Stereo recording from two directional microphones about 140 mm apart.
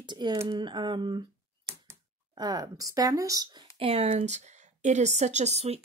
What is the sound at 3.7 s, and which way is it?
Speech, 40° right (ahead or behind).